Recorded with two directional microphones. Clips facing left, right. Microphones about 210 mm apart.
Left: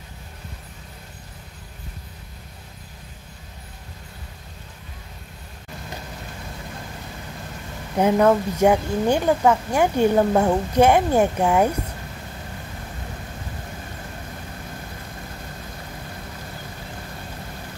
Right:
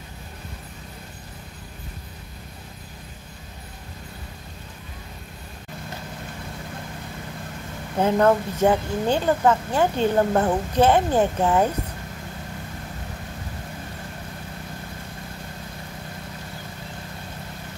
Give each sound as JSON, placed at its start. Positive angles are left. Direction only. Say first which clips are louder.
{"t": 8.0, "sound": "a woman's voice", "louder": "left 2 dB", "side_deg": 10}